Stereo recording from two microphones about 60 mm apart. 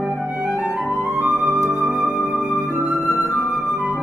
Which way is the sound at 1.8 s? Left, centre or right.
Centre.